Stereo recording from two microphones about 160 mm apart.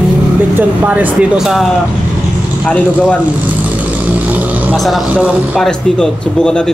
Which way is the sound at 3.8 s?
10° right (ahead or behind).